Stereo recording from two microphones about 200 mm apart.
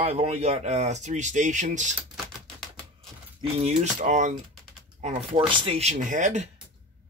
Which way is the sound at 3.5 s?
35° right (ahead or behind).